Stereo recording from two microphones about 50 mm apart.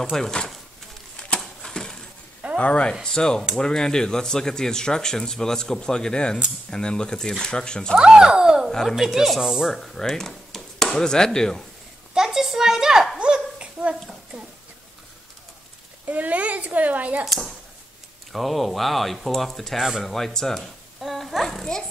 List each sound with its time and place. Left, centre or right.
0.1 s speech: centre
1.4 s a sound: centre
2.6 s speech: left
8.0 s speech: centre
9.7 s speech: centre
12.1 s a sound: centre
13.2 s a sound: right
16.1 s a child's voice: right
17.2 s a child's voice: centre